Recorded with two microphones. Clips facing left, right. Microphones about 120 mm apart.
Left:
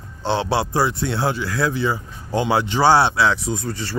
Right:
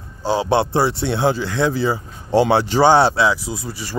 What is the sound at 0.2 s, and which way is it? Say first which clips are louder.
Speech: right 2 dB; 10° right (ahead or behind).